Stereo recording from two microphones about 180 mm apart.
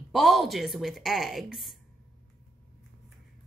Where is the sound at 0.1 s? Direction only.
Centre (ahead or behind).